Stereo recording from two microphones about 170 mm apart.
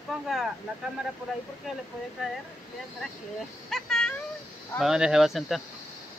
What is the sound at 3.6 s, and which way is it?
Speech, centre (ahead or behind).